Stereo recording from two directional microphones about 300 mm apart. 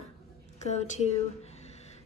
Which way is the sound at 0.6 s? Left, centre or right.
Left.